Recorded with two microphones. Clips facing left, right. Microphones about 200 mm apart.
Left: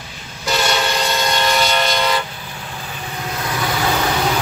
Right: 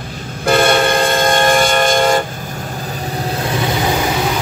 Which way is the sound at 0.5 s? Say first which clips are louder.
Right 7 dB; 55° right (ahead or behind).